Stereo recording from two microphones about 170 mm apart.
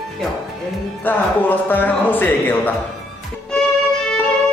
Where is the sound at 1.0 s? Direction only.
10° left (ahead or behind).